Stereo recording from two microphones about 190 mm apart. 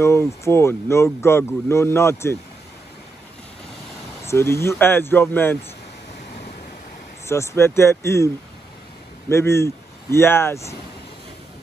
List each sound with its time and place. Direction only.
0.0 s speech: 15° left (ahead or behind)
4.3 s speech: 15° left (ahead or behind)
7.2 s speech: 15° left (ahead or behind)
9.3 s speech: 15° left (ahead or behind)